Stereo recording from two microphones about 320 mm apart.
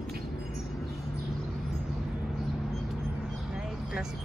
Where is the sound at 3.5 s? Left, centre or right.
Centre.